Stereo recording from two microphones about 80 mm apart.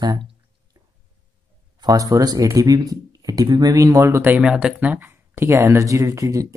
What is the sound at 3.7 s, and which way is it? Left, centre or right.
Speech, right.